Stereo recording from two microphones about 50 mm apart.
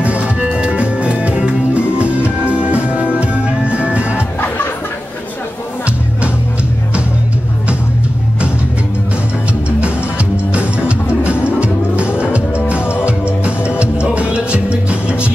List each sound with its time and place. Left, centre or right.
0.0 s music: right
9.8 s music: right